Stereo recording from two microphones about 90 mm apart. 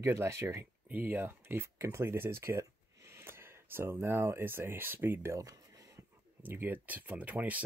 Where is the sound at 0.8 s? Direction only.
20° right (ahead or behind); by 5.6 s 35° right (ahead or behind).